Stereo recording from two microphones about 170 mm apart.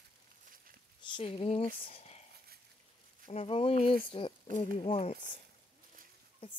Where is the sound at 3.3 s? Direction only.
35° left (ahead or behind).